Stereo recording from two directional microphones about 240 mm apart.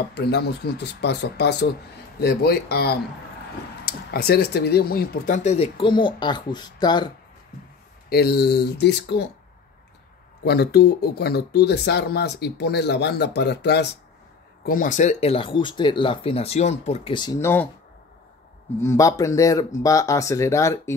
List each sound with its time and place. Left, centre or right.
0.1 s speech: left; by 7.1 s centre
8.1 s speech: left
10.4 s speech: left; by 17.6 s centre
18.8 s speech: centre